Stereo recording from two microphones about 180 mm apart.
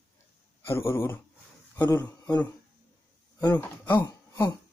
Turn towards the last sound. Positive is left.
turn(degrees=20)  # may be behind; listen again after turning